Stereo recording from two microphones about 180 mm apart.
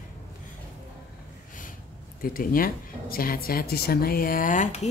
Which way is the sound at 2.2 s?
50° left (ahead or behind).